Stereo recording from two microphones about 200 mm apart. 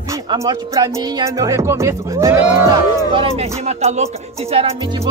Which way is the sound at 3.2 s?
30° right (ahead or behind).